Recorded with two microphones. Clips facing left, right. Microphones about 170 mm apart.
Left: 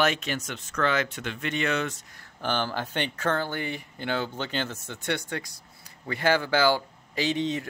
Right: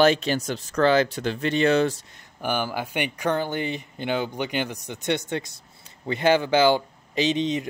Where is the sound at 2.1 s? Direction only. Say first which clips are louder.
Right 2 dB; 10° right (ahead or behind).